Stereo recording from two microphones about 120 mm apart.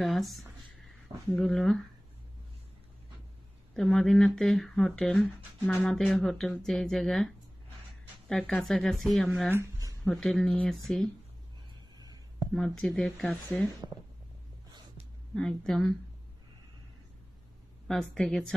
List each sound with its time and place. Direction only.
0.0 s speech: centre (ahead or behind)
3.7 s speech: 5° left (ahead or behind)
9.5 s a sound: 25° right (ahead or behind)
10.0 s speech: centre (ahead or behind)
12.5 s speech: 5° left (ahead or behind)
15.3 s speech: 5° left (ahead or behind)
18.1 s speech: 5° left (ahead or behind)